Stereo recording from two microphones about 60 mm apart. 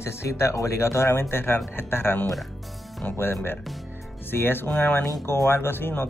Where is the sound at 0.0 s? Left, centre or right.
Left.